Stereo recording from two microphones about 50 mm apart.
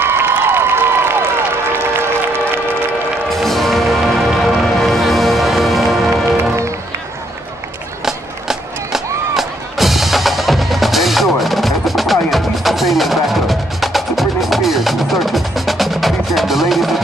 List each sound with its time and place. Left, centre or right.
0.0 s a sound: right
3.3 s music: centre
6.3 s music: right
8.0 s music: centre